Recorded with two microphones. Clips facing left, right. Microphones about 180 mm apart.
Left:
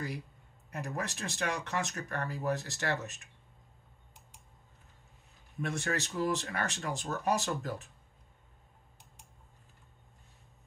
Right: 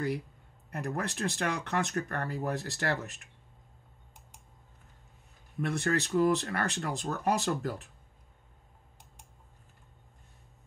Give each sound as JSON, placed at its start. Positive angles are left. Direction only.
{"t": 0.7, "sound": "speech", "side_deg": -60}
{"t": 5.6, "sound": "speech", "side_deg": -60}